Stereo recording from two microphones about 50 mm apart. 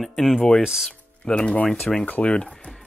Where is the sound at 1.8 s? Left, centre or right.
Centre.